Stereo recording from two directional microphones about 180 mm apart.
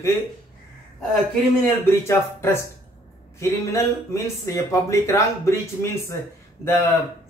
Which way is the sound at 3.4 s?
15° left (ahead or behind).